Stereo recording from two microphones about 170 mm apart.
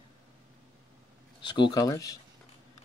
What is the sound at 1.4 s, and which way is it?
Speech, 25° left (ahead or behind).